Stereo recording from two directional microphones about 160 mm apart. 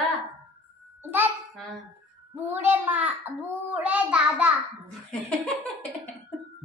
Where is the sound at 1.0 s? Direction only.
10° right (ahead or behind).